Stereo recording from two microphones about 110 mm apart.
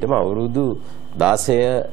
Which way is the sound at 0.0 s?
Centre (ahead or behind).